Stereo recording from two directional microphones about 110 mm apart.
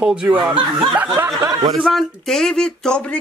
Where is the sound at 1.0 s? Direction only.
20° right (ahead or behind).